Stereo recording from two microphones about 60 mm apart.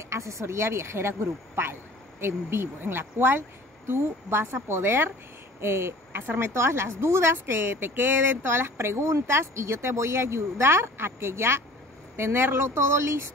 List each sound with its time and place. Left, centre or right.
0.0 s a woman's voice: right